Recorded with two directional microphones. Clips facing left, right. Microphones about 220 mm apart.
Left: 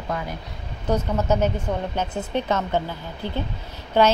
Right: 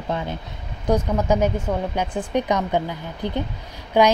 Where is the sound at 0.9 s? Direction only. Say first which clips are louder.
Right 2 dB; 10° right (ahead or behind).